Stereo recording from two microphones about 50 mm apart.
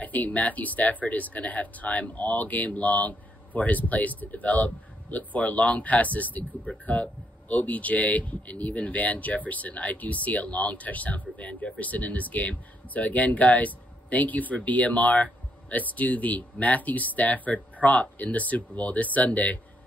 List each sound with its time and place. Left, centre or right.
0.0 s speech: left